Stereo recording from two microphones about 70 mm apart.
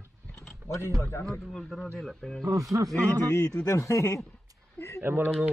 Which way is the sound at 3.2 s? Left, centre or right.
Left.